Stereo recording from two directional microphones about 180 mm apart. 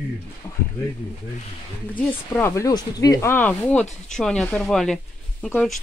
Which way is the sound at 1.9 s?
10° left (ahead or behind).